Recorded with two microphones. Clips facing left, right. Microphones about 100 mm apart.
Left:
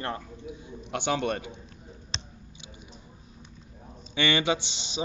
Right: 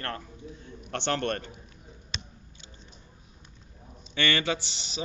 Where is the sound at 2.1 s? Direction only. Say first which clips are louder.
Even; 30° left (ahead or behind).